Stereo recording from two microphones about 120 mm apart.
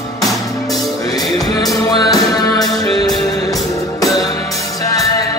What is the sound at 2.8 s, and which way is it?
Music, 55° right (ahead or behind).